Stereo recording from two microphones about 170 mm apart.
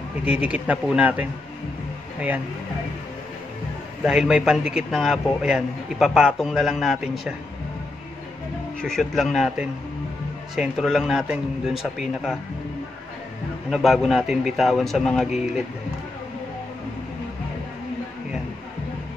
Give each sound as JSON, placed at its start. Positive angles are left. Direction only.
{"t": 0.5, "sound": "speech", "side_deg": -5}
{"t": 4.0, "sound": "a man's voice", "side_deg": -5}
{"t": 8.8, "sound": "a man's voice", "side_deg": 0}
{"t": 13.7, "sound": "a man's voice", "side_deg": 0}